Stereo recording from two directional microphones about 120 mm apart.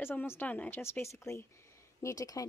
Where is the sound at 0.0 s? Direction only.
15° left (ahead or behind).